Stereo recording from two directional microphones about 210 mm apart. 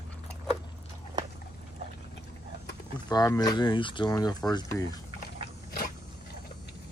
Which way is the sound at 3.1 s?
15° left (ahead or behind).